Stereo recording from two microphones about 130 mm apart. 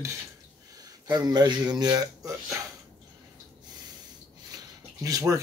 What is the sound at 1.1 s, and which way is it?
Speech, 30° right (ahead or behind).